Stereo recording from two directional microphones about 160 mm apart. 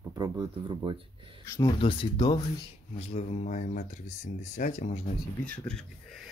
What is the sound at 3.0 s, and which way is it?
Speech, 40° left (ahead or behind).